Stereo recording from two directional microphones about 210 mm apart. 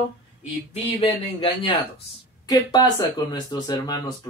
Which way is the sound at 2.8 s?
20° left (ahead or behind).